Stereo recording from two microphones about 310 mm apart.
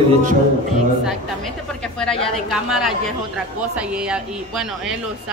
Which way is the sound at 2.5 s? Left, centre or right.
Centre.